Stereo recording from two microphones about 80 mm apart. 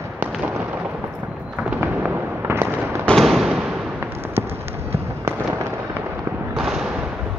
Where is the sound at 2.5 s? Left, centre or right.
Right.